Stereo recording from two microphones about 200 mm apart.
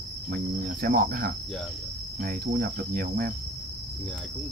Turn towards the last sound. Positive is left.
turn(degrees=-45)  # may be behind; listen again after turning